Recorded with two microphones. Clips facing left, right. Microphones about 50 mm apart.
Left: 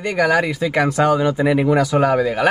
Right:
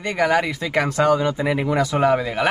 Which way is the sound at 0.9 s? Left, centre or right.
Left.